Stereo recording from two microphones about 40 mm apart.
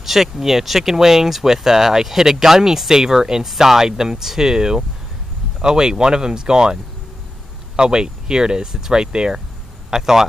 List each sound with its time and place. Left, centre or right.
0.0 s speech: centre